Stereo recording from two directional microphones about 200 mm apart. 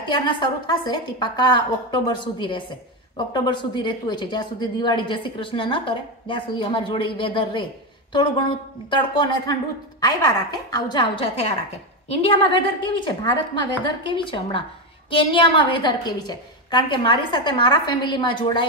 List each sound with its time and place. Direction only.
0.1 s speech: 25° left (ahead or behind)